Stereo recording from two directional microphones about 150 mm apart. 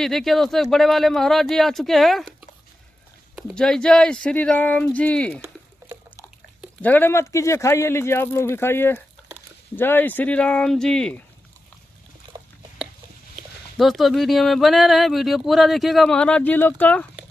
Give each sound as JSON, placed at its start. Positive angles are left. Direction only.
{"t": 0.0, "sound": "speech", "side_deg": 0}
{"t": 3.5, "sound": "speech", "side_deg": 5}
{"t": 5.4, "sound": "a sound", "side_deg": -10}
{"t": 6.8, "sound": "speech", "side_deg": 10}
{"t": 12.3, "sound": "dog", "side_deg": -30}
{"t": 13.4, "sound": "speech", "side_deg": 0}